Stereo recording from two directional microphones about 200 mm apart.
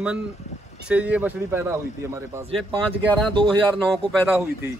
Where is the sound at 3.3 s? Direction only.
25° right (ahead or behind).